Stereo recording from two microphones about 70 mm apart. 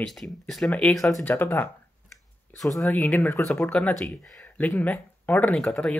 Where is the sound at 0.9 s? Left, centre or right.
Centre.